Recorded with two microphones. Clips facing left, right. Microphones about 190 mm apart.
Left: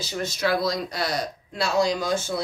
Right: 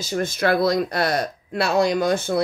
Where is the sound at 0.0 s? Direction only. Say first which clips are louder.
Right 4 dB; 50° right (ahead or behind).